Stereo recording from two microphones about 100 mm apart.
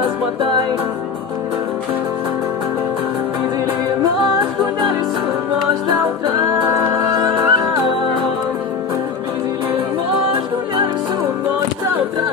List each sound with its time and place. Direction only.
6.8 s music: 30° right (ahead or behind)